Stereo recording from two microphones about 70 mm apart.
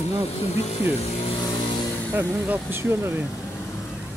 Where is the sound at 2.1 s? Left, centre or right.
Right.